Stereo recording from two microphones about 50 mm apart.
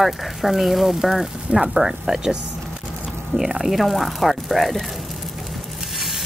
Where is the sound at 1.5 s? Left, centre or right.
Right.